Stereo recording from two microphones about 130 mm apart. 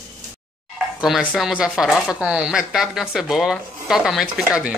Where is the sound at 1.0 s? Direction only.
5° right (ahead or behind).